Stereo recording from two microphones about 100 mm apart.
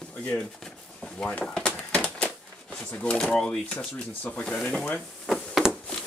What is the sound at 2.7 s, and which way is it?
Speech, 10° left (ahead or behind).